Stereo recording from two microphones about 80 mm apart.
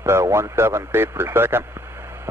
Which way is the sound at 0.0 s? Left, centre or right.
Right.